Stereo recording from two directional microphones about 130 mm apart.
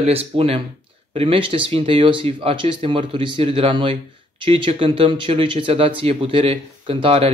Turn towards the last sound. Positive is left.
turn(degrees=-45)  # may be behind; listen again after turning